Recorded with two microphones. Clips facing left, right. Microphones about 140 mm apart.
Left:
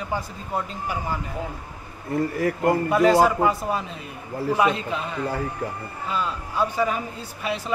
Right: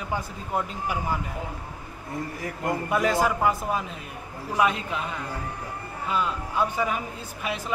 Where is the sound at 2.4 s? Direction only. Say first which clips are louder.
Left 8 dB; 60° left (ahead or behind).